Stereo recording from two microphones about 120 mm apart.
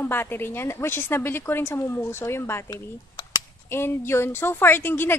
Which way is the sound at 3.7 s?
20° left (ahead or behind).